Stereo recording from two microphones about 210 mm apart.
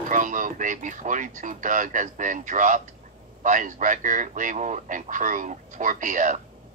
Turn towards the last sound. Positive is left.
turn(degrees=-35)  # may be behind; listen again after turning